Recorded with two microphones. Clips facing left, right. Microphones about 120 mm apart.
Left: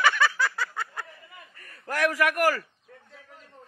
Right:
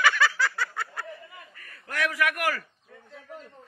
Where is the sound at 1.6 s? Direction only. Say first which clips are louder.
Left 4 dB; 35° left (ahead or behind).